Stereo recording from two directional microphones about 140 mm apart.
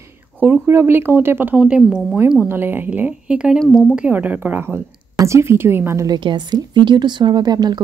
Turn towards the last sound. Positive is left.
turn(degrees=-30)  # may be behind; listen again after turning